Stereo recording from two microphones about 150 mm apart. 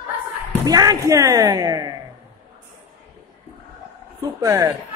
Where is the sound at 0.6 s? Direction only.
25° right (ahead or behind).